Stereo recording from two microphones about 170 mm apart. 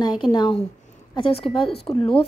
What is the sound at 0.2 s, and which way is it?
A woman's voice, 25° left (ahead or behind).